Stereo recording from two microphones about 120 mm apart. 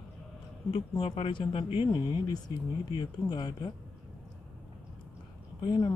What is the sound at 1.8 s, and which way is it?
Speech, 35° left (ahead or behind).